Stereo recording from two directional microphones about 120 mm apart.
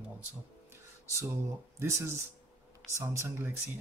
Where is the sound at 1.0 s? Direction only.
20° right (ahead or behind).